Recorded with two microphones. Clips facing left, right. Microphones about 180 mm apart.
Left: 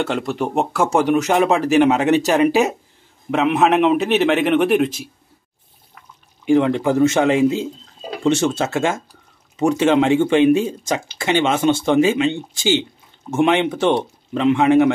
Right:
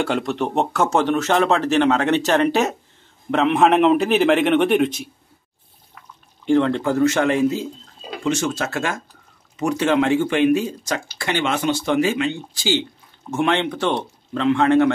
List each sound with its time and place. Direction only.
0.0 s a man's voice: centre (ahead or behind)
6.4 s speech: 15° left (ahead or behind)
8.2 s speech: 30° left (ahead or behind); by 14.9 s 15° left (ahead or behind)